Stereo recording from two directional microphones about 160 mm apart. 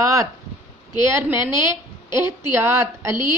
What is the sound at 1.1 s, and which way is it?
A woman's voice, 15° right (ahead or behind).